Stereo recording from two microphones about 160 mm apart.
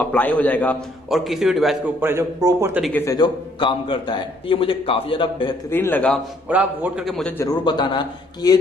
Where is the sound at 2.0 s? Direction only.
15° right (ahead or behind).